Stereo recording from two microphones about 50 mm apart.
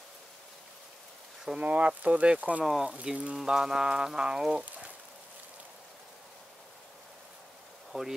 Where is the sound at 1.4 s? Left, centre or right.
Centre.